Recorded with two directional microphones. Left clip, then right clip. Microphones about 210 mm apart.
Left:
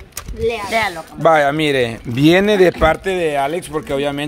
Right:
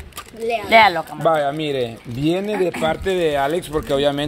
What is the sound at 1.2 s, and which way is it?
Speech, 30° left (ahead or behind).